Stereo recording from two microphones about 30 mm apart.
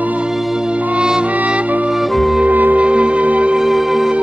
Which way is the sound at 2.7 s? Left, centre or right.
Right.